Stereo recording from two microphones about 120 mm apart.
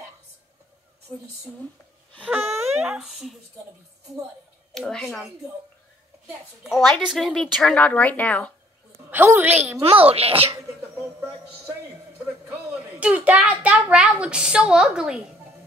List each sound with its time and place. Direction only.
2.2 s a sound: 20° right (ahead or behind)
3.0 s a woman's voice: centre (ahead or behind)
4.7 s a woman's voice: 5° left (ahead or behind)
7.1 s a woman's voice: centre (ahead or behind)
9.1 s speech: 15° right (ahead or behind)
9.8 s a child's voice: 55° right (ahead or behind)
11.0 s speech: 10° right (ahead or behind)